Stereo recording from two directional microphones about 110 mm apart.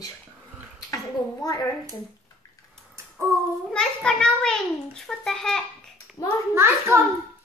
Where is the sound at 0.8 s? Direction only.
35° left (ahead or behind).